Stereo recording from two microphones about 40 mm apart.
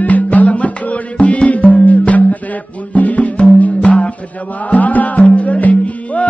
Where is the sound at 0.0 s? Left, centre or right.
Left.